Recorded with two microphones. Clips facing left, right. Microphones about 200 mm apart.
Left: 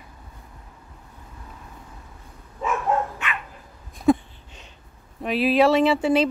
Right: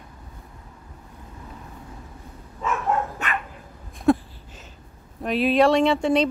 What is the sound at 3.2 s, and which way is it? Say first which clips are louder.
Dog: right 3 dB; 40° right (ahead or behind).